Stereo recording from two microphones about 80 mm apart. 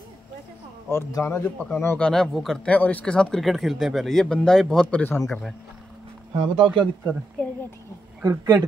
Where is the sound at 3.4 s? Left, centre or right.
Centre.